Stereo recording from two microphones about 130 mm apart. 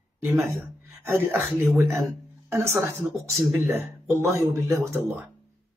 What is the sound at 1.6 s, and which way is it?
Speech, 20° right (ahead or behind).